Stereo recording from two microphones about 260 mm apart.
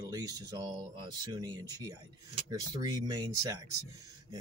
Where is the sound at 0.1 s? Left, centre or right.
Centre.